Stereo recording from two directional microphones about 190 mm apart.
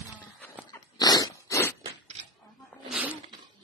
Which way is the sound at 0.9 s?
20° left (ahead or behind).